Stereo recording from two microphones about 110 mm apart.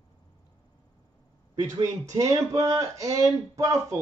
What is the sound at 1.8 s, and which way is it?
Speech, 30° right (ahead or behind).